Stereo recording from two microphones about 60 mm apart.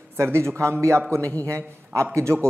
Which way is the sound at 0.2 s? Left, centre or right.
Right.